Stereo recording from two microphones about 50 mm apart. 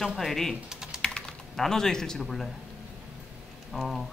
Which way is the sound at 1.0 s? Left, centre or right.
Centre.